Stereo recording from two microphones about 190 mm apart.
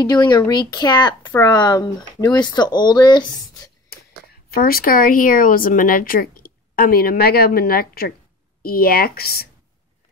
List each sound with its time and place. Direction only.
0.0 s speech: 20° left (ahead or behind)
4.5 s speech: 50° left (ahead or behind)